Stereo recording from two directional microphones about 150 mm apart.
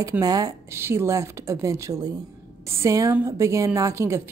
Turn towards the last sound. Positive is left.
turn(degrees=-20)  # may be behind; listen again after turning